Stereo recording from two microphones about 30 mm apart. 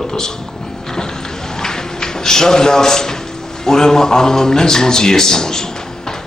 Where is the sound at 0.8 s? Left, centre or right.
Left.